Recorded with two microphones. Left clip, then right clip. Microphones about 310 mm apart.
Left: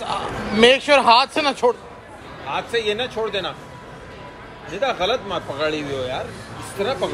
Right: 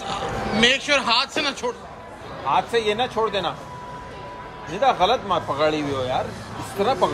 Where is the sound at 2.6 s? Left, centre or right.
Right.